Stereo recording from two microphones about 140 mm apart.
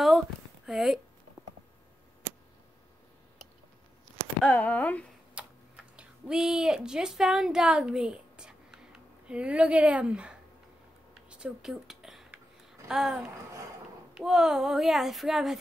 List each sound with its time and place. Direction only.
0.7 s a child's voice: 5° right (ahead or behind)
4.4 s speech: 10° left (ahead or behind)
5.4 s typing: 5° right (ahead or behind)
5.9 s a woman's voice: 5° right (ahead or behind)
11.2 s a sound: 5° right (ahead or behind)
12.8 s a child's voice: centre (ahead or behind)